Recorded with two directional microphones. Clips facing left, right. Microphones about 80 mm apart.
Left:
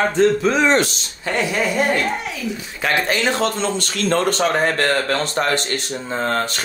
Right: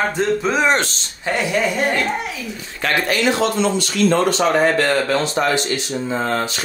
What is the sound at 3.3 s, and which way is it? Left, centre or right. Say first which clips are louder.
Speech: right 2 dB; left.